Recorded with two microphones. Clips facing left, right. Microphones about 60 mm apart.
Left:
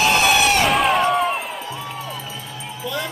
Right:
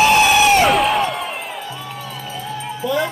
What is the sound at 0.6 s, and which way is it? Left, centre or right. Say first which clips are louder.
Crowd: right 1 dB; centre.